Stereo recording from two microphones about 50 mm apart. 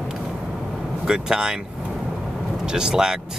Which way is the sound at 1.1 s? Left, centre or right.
Centre.